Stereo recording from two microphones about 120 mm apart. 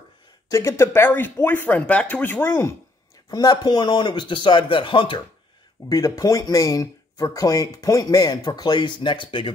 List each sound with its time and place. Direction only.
0.5 s speech: 25° left (ahead or behind)
3.3 s speech: 35° left (ahead or behind)
5.9 s speech: 25° left (ahead or behind); by 9.5 s 45° left (ahead or behind)